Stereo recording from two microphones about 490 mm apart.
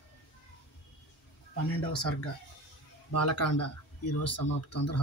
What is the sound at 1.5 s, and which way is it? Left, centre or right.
Speech, left.